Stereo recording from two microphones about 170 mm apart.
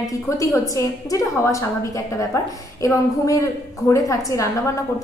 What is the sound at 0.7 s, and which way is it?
A woman's voice, 20° left (ahead or behind).